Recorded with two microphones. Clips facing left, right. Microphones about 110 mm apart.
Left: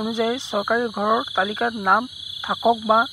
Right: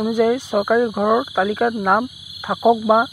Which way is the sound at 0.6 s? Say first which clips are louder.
Right 4 dB; centre (ahead or behind).